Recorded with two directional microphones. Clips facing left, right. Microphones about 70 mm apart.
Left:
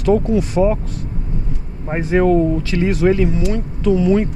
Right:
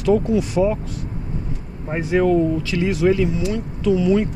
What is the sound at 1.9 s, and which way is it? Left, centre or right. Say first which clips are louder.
Speech: left 3 dB; left.